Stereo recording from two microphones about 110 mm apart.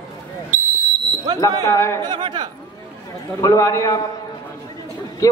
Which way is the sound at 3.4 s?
30° left (ahead or behind).